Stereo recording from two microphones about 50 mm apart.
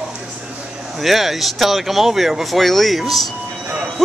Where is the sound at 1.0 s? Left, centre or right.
Centre.